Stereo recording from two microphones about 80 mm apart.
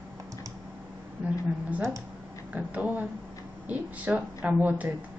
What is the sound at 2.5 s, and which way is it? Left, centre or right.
Speech, centre.